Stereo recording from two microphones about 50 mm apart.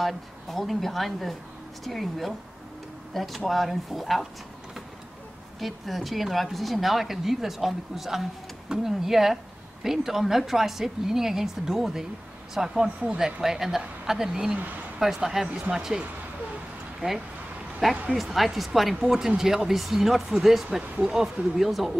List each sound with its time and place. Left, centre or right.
0.0 s speech: centre
5.6 s a woman's voice: centre; by 13.2 s right
13.2 s a woman's voice: centre
17.0 s speech: right
17.8 s a woman's voice: centre